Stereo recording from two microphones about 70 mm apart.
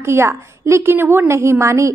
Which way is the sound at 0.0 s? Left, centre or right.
Right.